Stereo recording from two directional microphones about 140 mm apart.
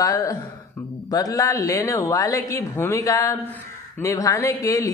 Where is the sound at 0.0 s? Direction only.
25° left (ahead or behind).